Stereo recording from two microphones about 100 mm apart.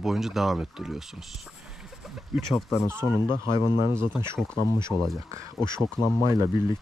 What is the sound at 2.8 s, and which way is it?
Speech, 25° right (ahead or behind).